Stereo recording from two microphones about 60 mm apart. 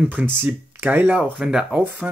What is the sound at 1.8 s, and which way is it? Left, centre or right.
Speech, right.